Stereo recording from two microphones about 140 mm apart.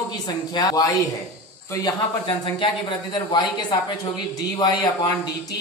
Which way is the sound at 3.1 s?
30° left (ahead or behind).